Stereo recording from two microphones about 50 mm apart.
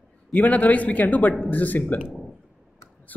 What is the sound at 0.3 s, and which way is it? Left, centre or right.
Speech, left.